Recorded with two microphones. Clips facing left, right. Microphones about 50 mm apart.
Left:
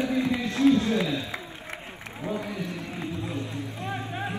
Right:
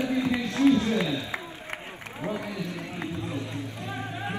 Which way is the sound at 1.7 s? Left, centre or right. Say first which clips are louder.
Right 1 dB; right.